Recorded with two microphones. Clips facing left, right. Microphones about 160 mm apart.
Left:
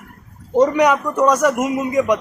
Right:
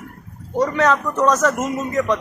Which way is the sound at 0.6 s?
15° left (ahead or behind).